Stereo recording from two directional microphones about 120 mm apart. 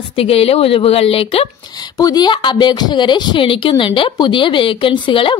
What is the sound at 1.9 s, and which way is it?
A woman's voice, 35° left (ahead or behind).